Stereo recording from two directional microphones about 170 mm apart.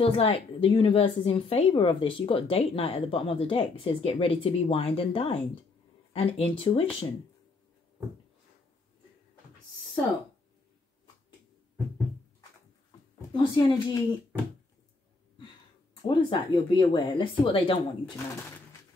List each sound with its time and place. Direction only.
0.0 s speech: 35° left (ahead or behind)
13.3 s speech: 25° left (ahead or behind)
15.9 s speech: 30° left (ahead or behind)
18.0 s speech: 15° left (ahead or behind)